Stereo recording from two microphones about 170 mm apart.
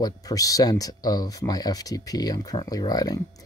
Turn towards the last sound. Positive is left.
turn(degrees=20)  # may be behind; listen again after turning